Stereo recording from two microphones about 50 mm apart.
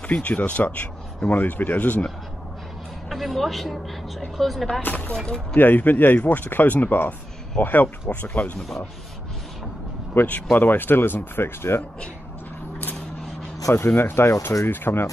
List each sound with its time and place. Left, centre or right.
0.0 s speech: left
3.1 s a man's voice: centre
4.8 s speech: left
5.2 s speech: centre
5.6 s speech: left
8.5 s speech: centre
10.2 s speech: left
13.7 s speech: left
14.7 s speech: left